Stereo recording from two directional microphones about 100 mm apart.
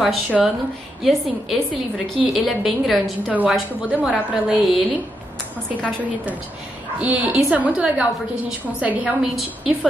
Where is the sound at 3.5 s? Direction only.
10° right (ahead or behind).